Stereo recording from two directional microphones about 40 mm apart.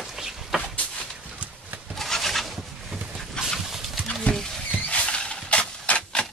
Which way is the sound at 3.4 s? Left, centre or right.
Left.